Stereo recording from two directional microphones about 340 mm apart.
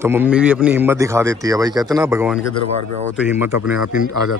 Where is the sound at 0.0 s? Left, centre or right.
Centre.